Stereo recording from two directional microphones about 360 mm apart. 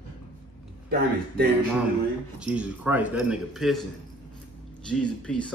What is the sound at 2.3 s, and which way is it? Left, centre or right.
A man's voice, centre.